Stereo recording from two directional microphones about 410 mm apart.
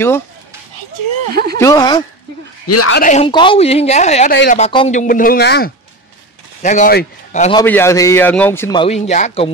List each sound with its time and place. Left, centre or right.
1.3 s speech: right
1.6 s speech: centre
2.7 s speech: left
3.0 s speech: centre
7.6 s speech: centre